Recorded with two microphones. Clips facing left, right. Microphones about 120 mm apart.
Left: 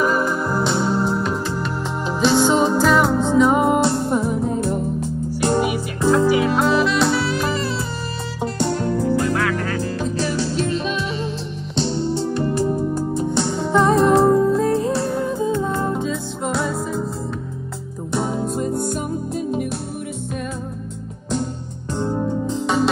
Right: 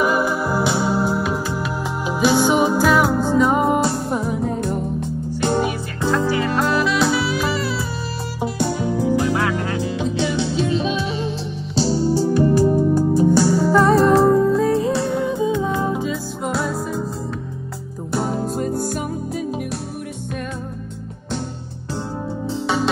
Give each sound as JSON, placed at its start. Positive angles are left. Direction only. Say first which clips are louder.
{"t": 0.0, "sound": "music", "louder": "right 1 dB", "side_deg": -5}
{"t": 9.3, "sound": "music", "louder": "even", "side_deg": -25}
{"t": 9.8, "sound": "music", "louder": "right 1 dB", "side_deg": 0}
{"t": 18.1, "sound": "music", "louder": "even", "side_deg": 0}
{"t": 21.9, "sound": "music", "louder": "left 5 dB", "side_deg": 0}